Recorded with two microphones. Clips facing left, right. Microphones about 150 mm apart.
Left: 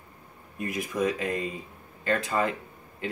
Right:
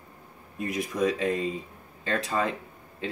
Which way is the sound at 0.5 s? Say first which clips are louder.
Right 1 dB; 30° right (ahead or behind).